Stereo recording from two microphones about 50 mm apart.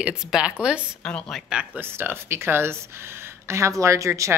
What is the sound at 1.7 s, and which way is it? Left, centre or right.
Speech, right.